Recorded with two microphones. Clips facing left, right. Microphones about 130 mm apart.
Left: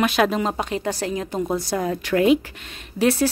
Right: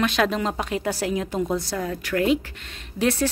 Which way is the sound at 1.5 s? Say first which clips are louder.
Left 2 dB; 10° left (ahead or behind).